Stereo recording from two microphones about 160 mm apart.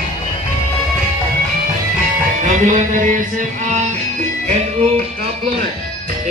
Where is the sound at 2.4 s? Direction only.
50° right (ahead or behind).